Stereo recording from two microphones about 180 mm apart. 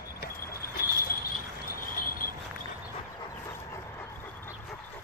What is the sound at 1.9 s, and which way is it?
Vehicle, 50° left (ahead or behind).